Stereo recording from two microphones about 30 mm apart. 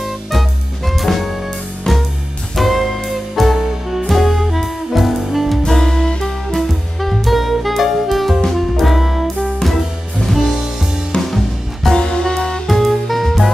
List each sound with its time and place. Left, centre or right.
0.3 s music: centre
1.9 s music: centre
2.5 s music: centre
3.5 s music: centre
5.7 s music: centre
6.5 s music: centre
11.1 s music: centre
12.0 s music: left
12.6 s music: centre